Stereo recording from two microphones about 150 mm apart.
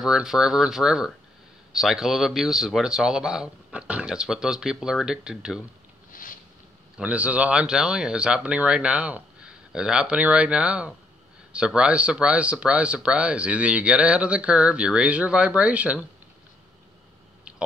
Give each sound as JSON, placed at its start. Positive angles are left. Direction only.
{"t": 0.0, "sound": "speech", "side_deg": -5}
{"t": 6.1, "sound": "a sound", "side_deg": 65}
{"t": 7.0, "sound": "speech", "side_deg": -10}